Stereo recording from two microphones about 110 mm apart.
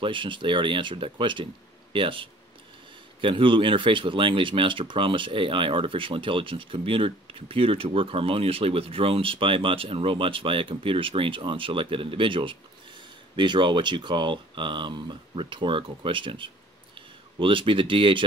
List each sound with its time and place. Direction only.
0.0 s speech: 50° right (ahead or behind)